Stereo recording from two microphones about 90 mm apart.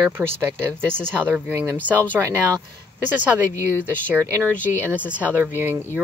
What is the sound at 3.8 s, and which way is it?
Speech, 20° right (ahead or behind).